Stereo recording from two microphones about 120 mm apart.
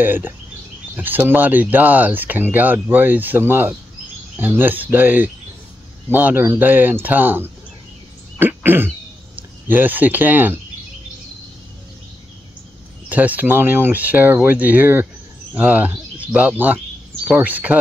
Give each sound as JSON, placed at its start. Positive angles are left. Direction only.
{"t": 0.0, "sound": "speech", "side_deg": -15}
{"t": 8.4, "sound": "throat clearing", "side_deg": -15}
{"t": 13.1, "sound": "speech", "side_deg": -15}